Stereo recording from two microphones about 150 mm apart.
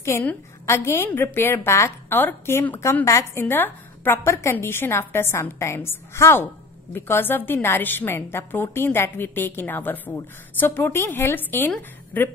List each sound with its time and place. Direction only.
0.0 s a woman's voice: 15° left (ahead or behind)